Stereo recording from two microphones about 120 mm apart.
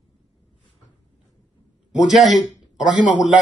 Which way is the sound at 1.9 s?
5° right (ahead or behind).